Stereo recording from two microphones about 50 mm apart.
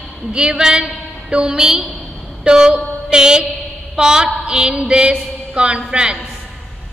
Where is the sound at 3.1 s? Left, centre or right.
Centre.